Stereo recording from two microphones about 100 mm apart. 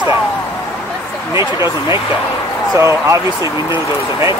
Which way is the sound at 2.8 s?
30° right (ahead or behind).